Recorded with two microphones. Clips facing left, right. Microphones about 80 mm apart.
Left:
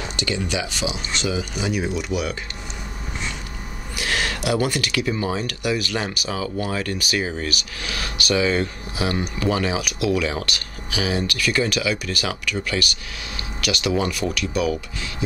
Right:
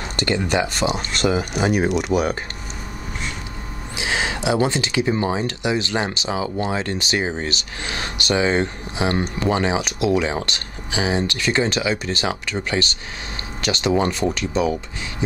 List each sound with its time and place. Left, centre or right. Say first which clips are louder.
0.1 s speech: right 6 dB; right
2.1 s speech: right 5 dB; right
3.9 s speech: right 1 dB; centre